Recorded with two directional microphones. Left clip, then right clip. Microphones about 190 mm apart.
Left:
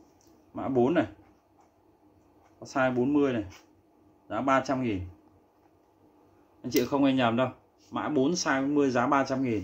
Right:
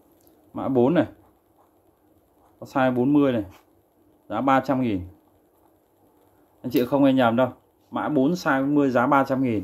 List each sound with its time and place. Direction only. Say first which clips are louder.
0.6 s speech: right 5 dB; 50° right (ahead or behind)
2.6 s speech: right 5 dB; 50° right (ahead or behind)
6.6 s speech: right 6 dB; 35° right (ahead or behind)